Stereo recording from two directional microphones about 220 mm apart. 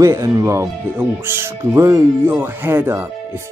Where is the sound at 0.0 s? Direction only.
15° right (ahead or behind).